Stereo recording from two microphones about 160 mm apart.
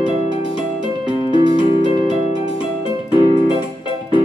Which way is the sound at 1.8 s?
30° left (ahead or behind).